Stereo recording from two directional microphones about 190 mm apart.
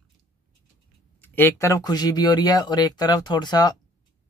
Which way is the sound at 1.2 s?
10° left (ahead or behind).